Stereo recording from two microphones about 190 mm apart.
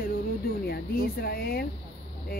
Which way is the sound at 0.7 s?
55° left (ahead or behind).